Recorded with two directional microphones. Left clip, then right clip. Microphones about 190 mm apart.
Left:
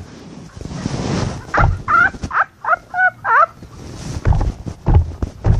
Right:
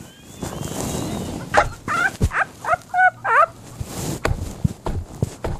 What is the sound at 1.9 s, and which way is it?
Fowl, 20° left (ahead or behind).